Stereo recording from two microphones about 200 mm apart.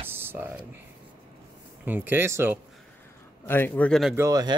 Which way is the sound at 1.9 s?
10° right (ahead or behind).